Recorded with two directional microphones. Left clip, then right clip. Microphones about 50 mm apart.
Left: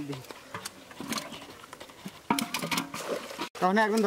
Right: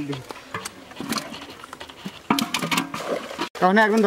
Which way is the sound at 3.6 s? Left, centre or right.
Centre.